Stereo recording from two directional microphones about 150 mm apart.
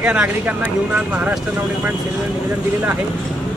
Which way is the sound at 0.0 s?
10° right (ahead or behind).